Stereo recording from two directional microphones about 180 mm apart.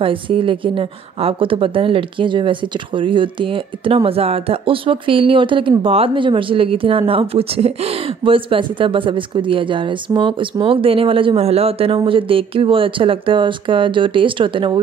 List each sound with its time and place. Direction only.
0.0 s a woman's voice: 30° right (ahead or behind)